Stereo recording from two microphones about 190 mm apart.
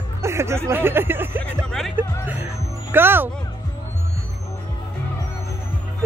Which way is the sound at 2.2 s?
10° right (ahead or behind).